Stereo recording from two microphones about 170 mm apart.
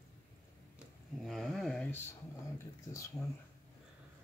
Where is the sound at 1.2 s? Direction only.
Centre (ahead or behind).